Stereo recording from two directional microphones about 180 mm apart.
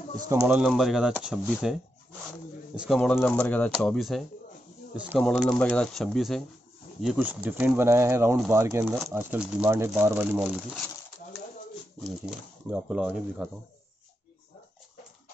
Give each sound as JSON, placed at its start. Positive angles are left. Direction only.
{"t": 0.3, "sound": "speech", "side_deg": -15}
{"t": 0.6, "sound": "speech", "side_deg": 0}
{"t": 3.0, "sound": "speech", "side_deg": 5}
{"t": 12.0, "sound": "speech", "side_deg": -5}